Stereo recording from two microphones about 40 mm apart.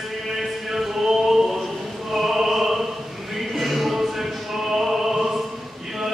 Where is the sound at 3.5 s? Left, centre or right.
Centre.